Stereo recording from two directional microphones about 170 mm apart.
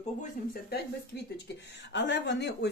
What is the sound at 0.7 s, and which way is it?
Speech, 70° left (ahead or behind).